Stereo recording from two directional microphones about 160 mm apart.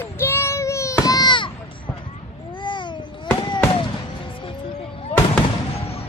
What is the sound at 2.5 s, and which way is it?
Babbling, 30° left (ahead or behind).